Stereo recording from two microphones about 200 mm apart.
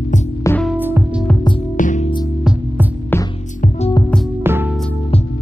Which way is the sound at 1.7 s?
40° left (ahead or behind).